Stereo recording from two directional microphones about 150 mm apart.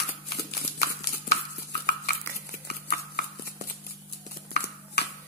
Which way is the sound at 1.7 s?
90° left.